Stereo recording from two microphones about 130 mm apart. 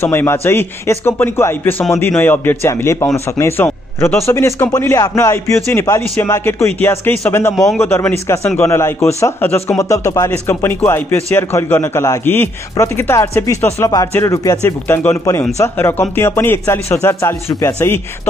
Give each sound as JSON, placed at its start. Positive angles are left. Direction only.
{"t": 0.0, "sound": "a man's voice", "side_deg": 20}